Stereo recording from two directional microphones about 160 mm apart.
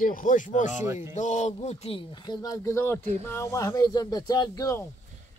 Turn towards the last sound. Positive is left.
turn(degrees=20)  # may be behind; listen again after turning